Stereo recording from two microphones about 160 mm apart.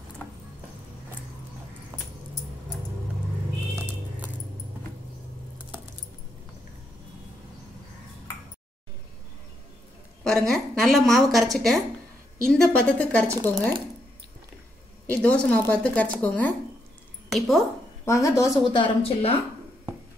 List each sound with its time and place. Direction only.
1.9 s keys jangling: 30° right (ahead or behind)
10.2 s a woman's voice: 5° left (ahead or behind)
15.0 s a woman's voice: 10° left (ahead or behind)
18.0 s a woman's voice: 20° left (ahead or behind)
18.6 s a woman's voice: 30° left (ahead or behind)